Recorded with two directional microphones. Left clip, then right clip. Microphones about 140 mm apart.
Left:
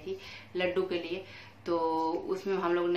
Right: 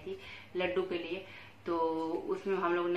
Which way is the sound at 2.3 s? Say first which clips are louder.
Left 2 dB; 15° left (ahead or behind).